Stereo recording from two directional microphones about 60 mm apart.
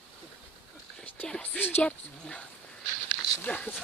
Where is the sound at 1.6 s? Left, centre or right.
Left.